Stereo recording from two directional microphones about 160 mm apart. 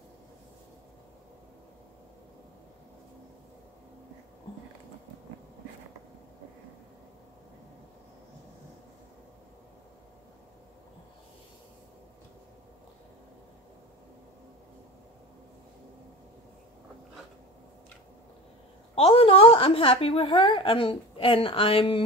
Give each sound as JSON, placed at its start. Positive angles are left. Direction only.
{"t": 18.9, "sound": "a woman's voice", "side_deg": 35}